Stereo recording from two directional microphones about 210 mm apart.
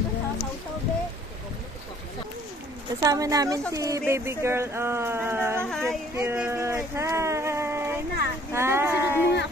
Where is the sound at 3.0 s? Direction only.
15° right (ahead or behind).